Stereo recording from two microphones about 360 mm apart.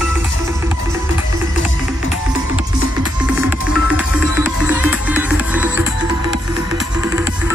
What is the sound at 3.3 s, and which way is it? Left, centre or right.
Music, centre.